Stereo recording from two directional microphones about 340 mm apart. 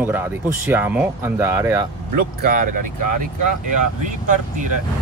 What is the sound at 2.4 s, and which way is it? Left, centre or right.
Speech, right.